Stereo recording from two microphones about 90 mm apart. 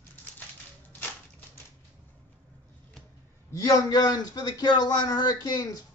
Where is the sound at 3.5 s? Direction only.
40° left (ahead or behind).